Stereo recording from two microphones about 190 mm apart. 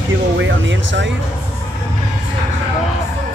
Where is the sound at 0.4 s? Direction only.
80° right.